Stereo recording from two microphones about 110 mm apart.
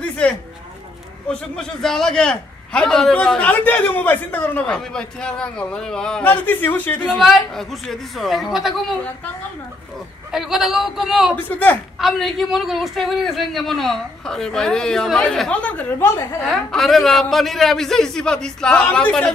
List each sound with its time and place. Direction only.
1.3 s a man's voice: 5° left (ahead or behind)
7.1 s a man's voice: centre (ahead or behind)
10.3 s a man's voice: 5° right (ahead or behind)
11.3 s a man's voice: 15° left (ahead or behind)
12.0 s a man's voice: centre (ahead or behind)
16.4 s a man's voice: centre (ahead or behind)